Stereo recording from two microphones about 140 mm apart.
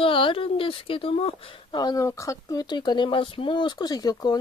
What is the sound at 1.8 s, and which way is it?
Speech, 25° left (ahead or behind).